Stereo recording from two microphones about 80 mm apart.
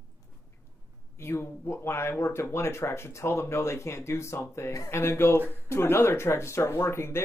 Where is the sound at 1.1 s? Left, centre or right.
Left.